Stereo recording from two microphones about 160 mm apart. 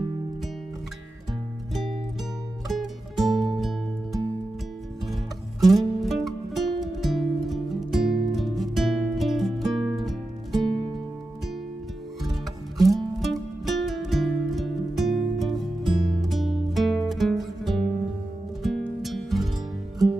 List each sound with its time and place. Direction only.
2.7 s music: centre (ahead or behind)
5.6 s music: centre (ahead or behind)
12.2 s music: centre (ahead or behind)
15.8 s music: 25° right (ahead or behind)
16.3 s music: centre (ahead or behind)